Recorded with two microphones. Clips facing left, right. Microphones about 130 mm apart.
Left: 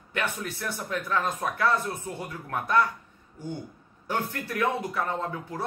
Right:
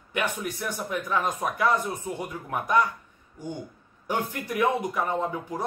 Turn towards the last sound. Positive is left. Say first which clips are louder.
# right 3 dB
turn(degrees=-15)  # may be behind; listen again after turning